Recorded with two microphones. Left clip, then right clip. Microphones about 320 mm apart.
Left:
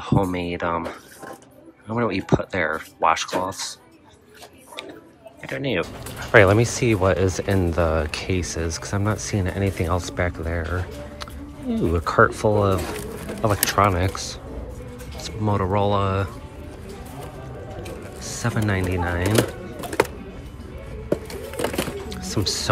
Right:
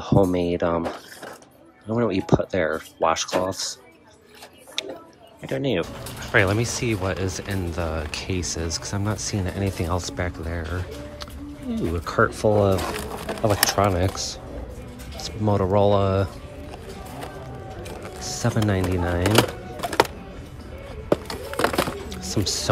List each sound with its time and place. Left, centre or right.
0.0 s speech: centre
1.9 s speech: centre
5.5 s speech: centre
18.2 s music: centre
18.7 s speech: centre
21.5 s bird: right
22.1 s a sound: centre